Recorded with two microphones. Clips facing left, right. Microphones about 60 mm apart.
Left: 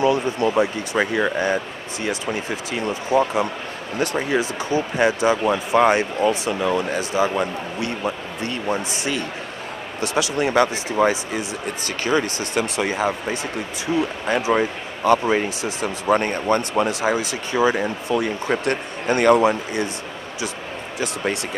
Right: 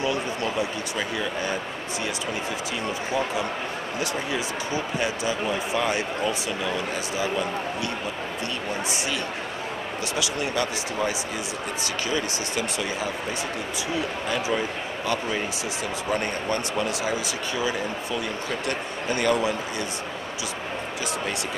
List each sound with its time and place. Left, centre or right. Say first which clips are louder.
0.0 s a sound: left 7 dB; left
0.6 s speech: left 8 dB; left
3.1 s speech: left 9 dB; left
14.5 s speech: left 8 dB; left
15.0 s speech: left 10 dB; left